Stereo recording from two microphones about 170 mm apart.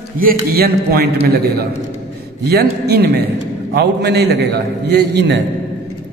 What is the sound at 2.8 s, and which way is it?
A man's voice, 70° right (ahead or behind).